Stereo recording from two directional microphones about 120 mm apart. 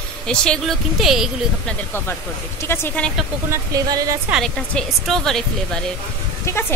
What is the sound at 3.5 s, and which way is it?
Speech, 30° right (ahead or behind).